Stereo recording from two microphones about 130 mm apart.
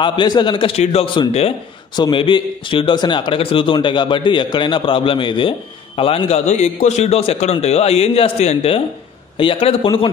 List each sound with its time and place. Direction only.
0.0 s a man's voice: 35° left (ahead or behind)